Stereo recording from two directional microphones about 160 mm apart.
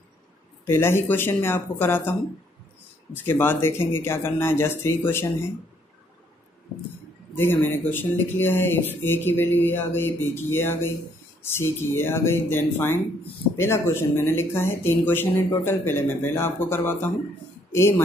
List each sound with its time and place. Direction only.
0.7 s speech: 15° left (ahead or behind)
3.2 s speech: 15° left (ahead or behind)
7.3 s speech: 15° left (ahead or behind)